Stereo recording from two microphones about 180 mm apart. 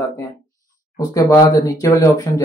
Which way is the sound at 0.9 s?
20° left (ahead or behind).